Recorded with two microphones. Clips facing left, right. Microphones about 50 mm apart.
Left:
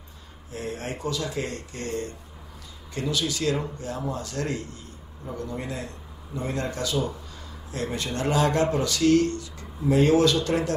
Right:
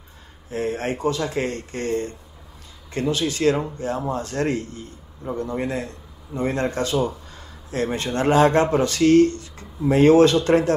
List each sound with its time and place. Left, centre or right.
0.5 s a man's voice: right